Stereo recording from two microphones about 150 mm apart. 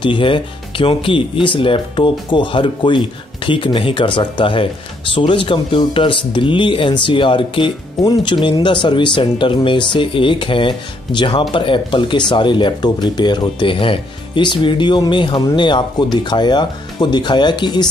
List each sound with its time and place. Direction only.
0.0 s speech: 35° left (ahead or behind)